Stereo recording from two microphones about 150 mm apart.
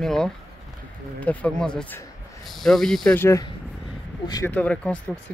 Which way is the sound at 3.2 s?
20° left (ahead or behind).